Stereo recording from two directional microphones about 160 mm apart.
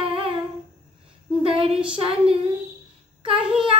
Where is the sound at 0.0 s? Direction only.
35° right (ahead or behind).